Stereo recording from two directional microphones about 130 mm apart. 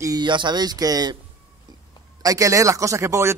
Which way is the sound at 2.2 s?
25° right (ahead or behind).